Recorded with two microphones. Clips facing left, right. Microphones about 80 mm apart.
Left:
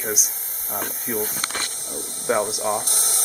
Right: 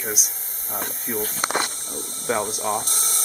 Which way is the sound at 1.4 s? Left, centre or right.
Right.